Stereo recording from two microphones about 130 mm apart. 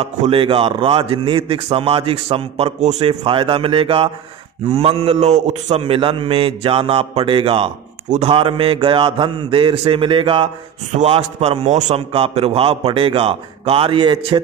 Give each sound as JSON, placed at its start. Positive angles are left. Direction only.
{"t": 0.0, "sound": "a man's voice", "side_deg": -45}
{"t": 10.9, "sound": "a man's voice", "side_deg": -60}